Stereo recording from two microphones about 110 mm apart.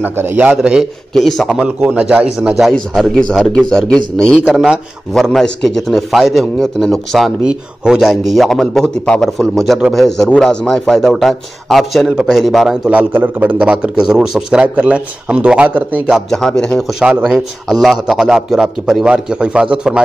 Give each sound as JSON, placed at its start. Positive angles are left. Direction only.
{"t": 0.0, "sound": "a man's voice", "side_deg": -20}
{"t": 10.3, "sound": "a man's voice", "side_deg": 5}
{"t": 16.3, "sound": "speech", "side_deg": 5}
{"t": 17.0, "sound": "a man's voice", "side_deg": -10}